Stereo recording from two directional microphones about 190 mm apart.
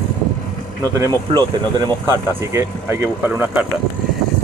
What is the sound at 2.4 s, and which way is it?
Speech, 15° right (ahead or behind).